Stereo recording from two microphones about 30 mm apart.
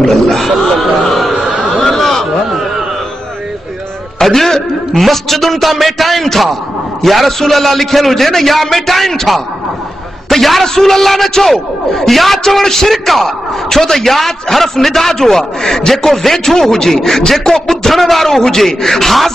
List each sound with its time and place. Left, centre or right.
0.0 s a sound: centre
4.2 s a sound: centre
4.9 s a man's voice: centre
10.3 s a man's voice: centre
12.6 s a man's voice: centre
15.9 s a man's voice: centre